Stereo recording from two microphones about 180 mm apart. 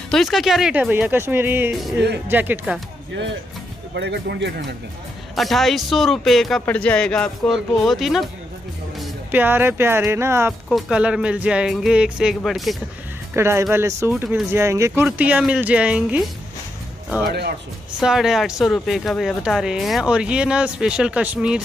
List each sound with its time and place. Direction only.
0.1 s speech: centre (ahead or behind)
3.9 s speech: 70° right (ahead or behind)
5.3 s speech: centre (ahead or behind)
9.3 s speech: 10° right (ahead or behind)
13.3 s speech: 15° right (ahead or behind)
17.3 s speech: 65° right (ahead or behind)
18.0 s speech: 5° right (ahead or behind)